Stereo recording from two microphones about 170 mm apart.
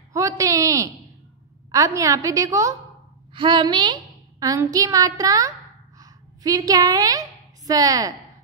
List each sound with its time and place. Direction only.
0.1 s a woman's voice: 20° right (ahead or behind)
3.3 s a woman's voice: 30° right (ahead or behind)
5.9 s a sound: 20° right (ahead or behind)